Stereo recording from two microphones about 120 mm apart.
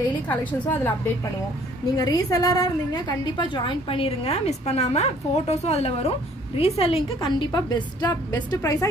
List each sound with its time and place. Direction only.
0.3 s a woman's voice: 15° left (ahead or behind)
2.0 s a woman's voice: 30° left (ahead or behind); by 7.4 s 50° left (ahead or behind)
7.5 s a woman's voice: 35° left (ahead or behind)